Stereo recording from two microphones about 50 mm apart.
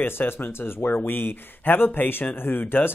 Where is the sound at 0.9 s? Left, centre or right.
Left.